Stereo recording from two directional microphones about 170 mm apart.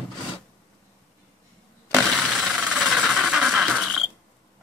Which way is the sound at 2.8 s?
5° right (ahead or behind).